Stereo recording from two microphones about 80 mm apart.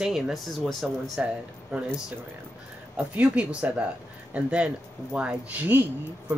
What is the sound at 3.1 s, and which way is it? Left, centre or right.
Speech, centre.